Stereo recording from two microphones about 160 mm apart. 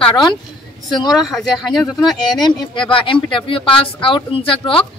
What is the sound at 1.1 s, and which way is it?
Speech, centre (ahead or behind).